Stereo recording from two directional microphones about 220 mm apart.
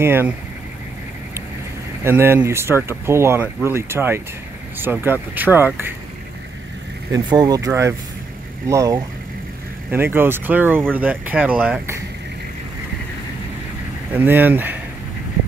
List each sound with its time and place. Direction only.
0.0 s speech: 10° right (ahead or behind)
2.0 s speech: 10° right (ahead or behind)
7.1 s speech: 15° right (ahead or behind)
14.1 s speech: 10° right (ahead or behind)